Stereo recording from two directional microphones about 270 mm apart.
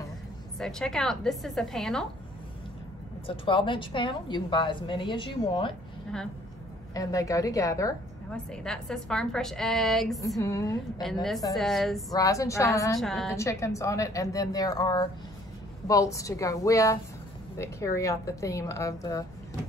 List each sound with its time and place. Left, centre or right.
0.6 s a woman's voice: centre
3.3 s a woman's voice: centre
6.9 s a woman's voice: centre
10.2 s a woman's voice: centre
12.1 s a woman's voice: centre
12.9 s a woman's voice: centre